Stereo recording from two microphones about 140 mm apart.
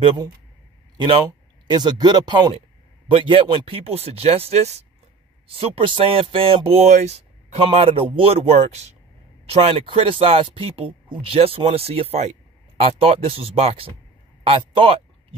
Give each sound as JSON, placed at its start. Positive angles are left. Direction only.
{"t": 0.9, "sound": "speech", "side_deg": -35}
{"t": 5.5, "sound": "speech", "side_deg": -40}
{"t": 7.6, "sound": "speech", "side_deg": -40}